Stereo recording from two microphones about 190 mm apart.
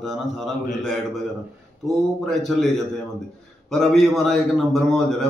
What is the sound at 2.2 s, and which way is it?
A man's voice, centre (ahead or behind).